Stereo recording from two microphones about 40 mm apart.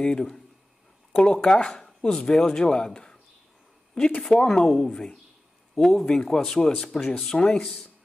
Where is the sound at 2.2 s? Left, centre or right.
Centre.